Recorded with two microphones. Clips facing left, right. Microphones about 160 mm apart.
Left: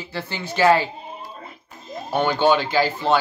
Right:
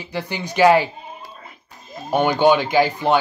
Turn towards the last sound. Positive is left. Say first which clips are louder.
# right 3 dB
turn(degrees=-15)  # may be behind; listen again after turning